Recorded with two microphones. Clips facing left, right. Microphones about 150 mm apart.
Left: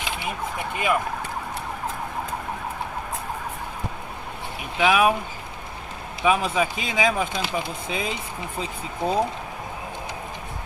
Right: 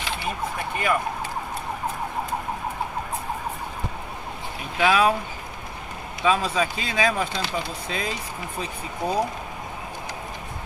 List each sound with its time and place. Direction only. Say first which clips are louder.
0.0 s a sound: right 1 dB; 15° left (ahead or behind)
4.7 s speech: even; 15° left (ahead or behind)
6.2 s speech: left 1 dB; 15° left (ahead or behind)